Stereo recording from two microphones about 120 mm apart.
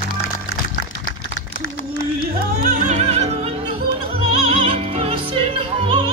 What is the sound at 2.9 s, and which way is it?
Music, 65° right (ahead or behind).